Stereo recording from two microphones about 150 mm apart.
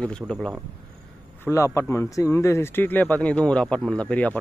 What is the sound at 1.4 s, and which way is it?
Speech, 20° left (ahead or behind).